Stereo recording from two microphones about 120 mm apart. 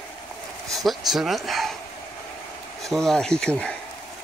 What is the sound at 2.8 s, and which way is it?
Speech, centre (ahead or behind).